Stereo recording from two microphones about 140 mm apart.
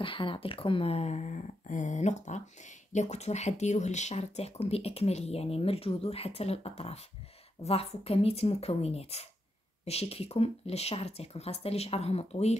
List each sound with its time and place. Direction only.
0.0 s speech: 40° left (ahead or behind)